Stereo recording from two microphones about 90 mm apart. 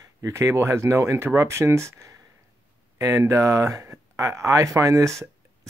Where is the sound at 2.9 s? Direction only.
35° right (ahead or behind).